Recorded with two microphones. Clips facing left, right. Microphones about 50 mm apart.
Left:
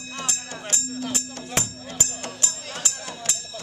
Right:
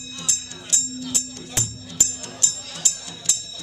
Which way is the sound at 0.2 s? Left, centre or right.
Left.